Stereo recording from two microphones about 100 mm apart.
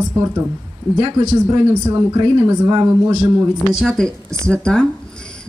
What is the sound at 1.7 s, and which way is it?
Speech, 30° right (ahead or behind).